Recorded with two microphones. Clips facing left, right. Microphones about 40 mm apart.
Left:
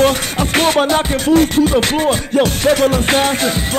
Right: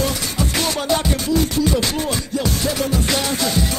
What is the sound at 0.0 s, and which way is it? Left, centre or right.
Music, left.